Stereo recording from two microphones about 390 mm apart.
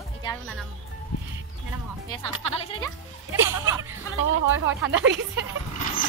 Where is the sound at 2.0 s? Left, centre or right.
Centre.